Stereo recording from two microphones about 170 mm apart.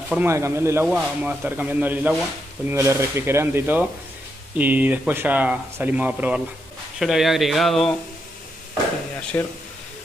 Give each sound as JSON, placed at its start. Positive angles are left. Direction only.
{"t": 0.1, "sound": "speech", "side_deg": -15}
{"t": 9.3, "sound": "speech", "side_deg": 15}